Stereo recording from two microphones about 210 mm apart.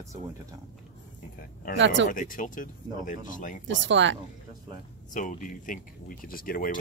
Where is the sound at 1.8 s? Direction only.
60° right (ahead or behind).